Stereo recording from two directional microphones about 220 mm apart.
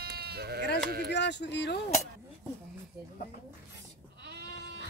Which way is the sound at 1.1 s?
50° left (ahead or behind).